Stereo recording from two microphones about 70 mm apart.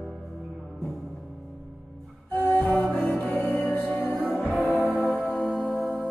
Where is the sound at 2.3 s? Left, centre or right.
Centre.